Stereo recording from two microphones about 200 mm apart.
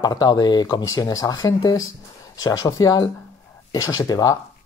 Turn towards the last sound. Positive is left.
turn(degrees=20)  # may be behind; listen again after turning